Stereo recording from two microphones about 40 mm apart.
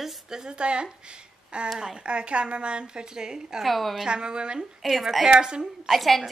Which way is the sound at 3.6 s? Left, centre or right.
Centre.